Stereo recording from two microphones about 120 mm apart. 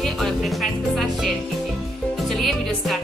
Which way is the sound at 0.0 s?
Centre (ahead or behind).